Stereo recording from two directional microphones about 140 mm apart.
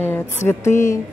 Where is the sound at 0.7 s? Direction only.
65° left (ahead or behind).